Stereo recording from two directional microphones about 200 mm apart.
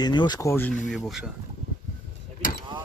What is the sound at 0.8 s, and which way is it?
Speech, centre (ahead or behind).